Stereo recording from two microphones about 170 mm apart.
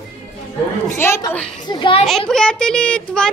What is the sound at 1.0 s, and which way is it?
A woman's voice, 15° left (ahead or behind).